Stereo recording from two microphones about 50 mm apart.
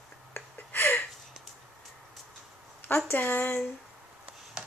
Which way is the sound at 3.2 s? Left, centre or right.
Left.